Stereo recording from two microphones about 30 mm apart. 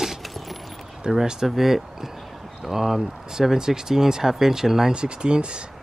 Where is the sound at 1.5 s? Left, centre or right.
Centre.